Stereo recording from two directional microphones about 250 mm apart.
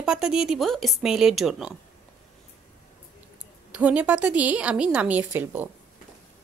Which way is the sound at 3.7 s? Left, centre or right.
Centre.